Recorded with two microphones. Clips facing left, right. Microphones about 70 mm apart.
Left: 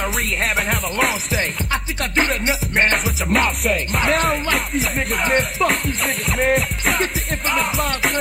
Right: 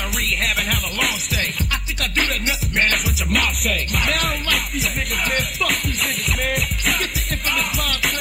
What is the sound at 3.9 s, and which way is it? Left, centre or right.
Music, left.